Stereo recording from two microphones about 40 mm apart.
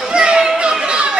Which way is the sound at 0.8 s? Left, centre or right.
Right.